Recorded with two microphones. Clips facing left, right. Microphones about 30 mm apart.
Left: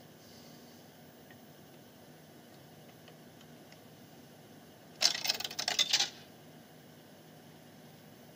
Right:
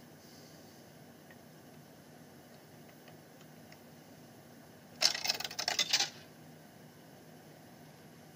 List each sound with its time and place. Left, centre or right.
4.9 s typewriter: centre